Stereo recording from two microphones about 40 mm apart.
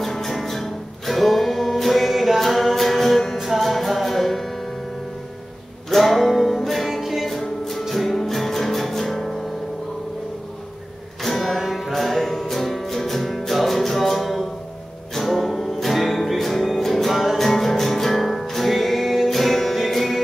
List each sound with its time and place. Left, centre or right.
0.0 s music: centre
5.9 s music: centre
11.2 s music: centre